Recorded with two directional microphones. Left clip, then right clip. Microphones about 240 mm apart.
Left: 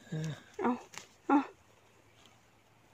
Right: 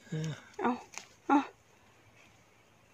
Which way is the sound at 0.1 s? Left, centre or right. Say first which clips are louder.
Right 2 dB; centre.